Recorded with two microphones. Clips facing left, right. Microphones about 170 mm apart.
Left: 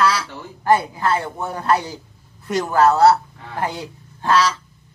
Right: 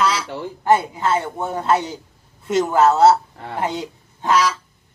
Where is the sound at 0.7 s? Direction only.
20° right (ahead or behind).